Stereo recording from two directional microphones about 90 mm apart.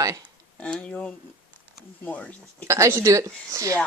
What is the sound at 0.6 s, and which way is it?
Speech, 15° left (ahead or behind).